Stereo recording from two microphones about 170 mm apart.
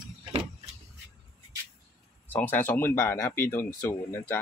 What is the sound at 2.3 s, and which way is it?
Speech, 10° left (ahead or behind).